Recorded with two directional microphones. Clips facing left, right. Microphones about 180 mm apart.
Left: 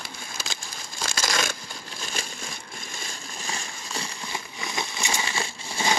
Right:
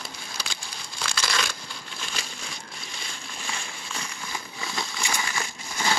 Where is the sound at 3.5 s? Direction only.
40° left (ahead or behind).